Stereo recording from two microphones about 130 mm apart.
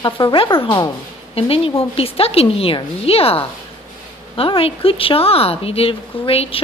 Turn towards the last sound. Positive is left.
turn(degrees=45)  # may be behind; listen again after turning